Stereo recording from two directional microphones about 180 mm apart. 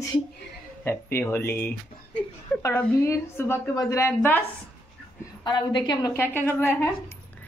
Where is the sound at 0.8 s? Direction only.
10° left (ahead or behind).